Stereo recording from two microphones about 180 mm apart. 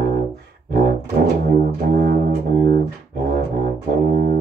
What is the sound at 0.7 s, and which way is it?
Music, 65° right (ahead or behind).